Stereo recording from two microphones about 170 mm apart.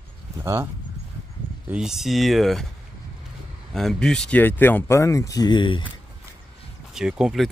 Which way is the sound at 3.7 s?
5° left (ahead or behind).